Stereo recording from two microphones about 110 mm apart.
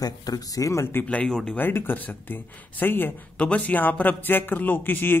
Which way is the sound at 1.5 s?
20° left (ahead or behind).